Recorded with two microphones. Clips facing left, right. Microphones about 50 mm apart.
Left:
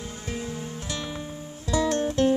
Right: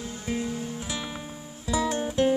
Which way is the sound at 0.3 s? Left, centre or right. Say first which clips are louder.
Right 3 dB; centre.